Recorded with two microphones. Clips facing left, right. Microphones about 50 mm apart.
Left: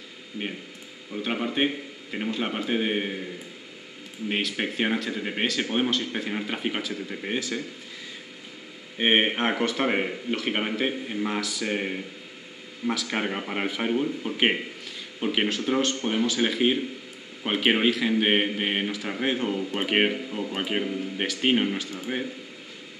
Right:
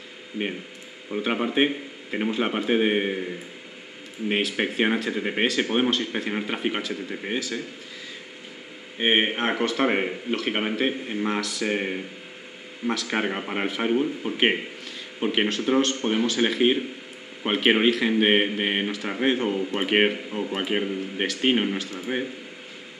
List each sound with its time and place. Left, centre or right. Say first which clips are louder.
1.1 s a man's voice: right 4 dB; centre
4.3 s a man's voice: right 3 dB; centre
7.3 s speech: even; centre
8.9 s speech: even; centre
11.2 s a man's voice: right 4 dB; centre